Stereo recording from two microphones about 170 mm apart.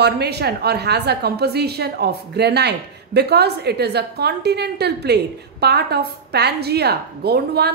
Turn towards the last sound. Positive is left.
turn(degrees=-70)  # may be behind; listen again after turning